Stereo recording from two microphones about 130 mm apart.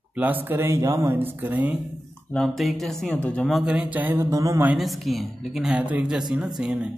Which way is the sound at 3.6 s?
10° right (ahead or behind).